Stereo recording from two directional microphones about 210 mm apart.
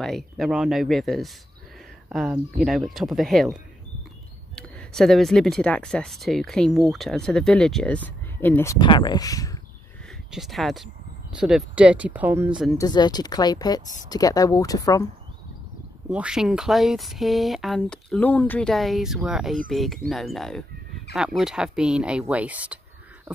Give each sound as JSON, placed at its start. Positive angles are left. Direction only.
{"t": 0.0, "sound": "speech", "side_deg": 0}
{"t": 4.6, "sound": "speech", "side_deg": 5}
{"t": 8.7, "sound": "speech", "side_deg": 20}
{"t": 10.3, "sound": "speech", "side_deg": 0}
{"t": 12.7, "sound": "speech", "side_deg": 20}
{"t": 16.1, "sound": "speech", "side_deg": -5}